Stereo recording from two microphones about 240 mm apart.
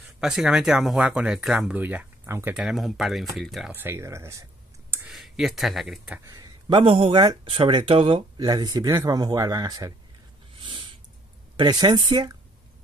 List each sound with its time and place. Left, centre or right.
0.2 s speech: centre
10.6 s a sound: right
11.5 s speech: centre